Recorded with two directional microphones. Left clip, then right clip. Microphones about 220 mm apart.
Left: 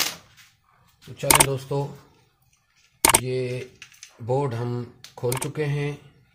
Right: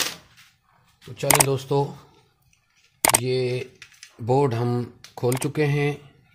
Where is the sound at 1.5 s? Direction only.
45° right (ahead or behind).